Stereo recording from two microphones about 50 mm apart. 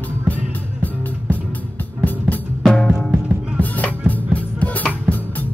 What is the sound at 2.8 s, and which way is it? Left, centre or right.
Music, centre.